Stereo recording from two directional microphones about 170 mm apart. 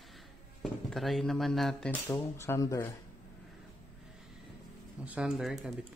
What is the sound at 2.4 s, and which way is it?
Speech, 15° left (ahead or behind).